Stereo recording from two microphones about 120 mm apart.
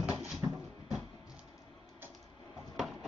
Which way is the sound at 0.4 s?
30° right (ahead or behind).